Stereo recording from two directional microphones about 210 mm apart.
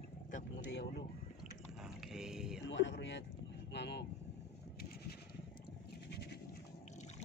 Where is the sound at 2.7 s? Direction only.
60° left (ahead or behind).